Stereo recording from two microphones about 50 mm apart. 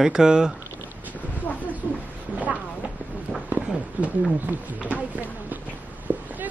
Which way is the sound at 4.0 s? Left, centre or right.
Right.